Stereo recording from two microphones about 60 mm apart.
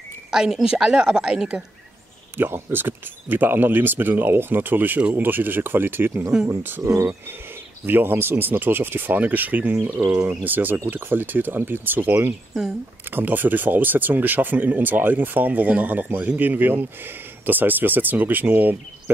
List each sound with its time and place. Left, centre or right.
0.3 s a woman's voice: centre
2.3 s speech: right
6.3 s a woman's voice: centre
6.8 s speech: right
7.8 s speech: right
9.8 s speech: right
10.2 s speech: right